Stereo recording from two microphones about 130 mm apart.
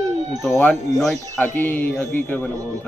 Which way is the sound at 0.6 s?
5° left (ahead or behind).